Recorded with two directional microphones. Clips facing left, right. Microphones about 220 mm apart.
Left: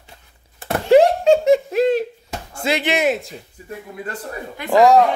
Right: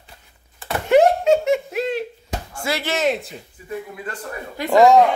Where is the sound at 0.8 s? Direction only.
30° left (ahead or behind).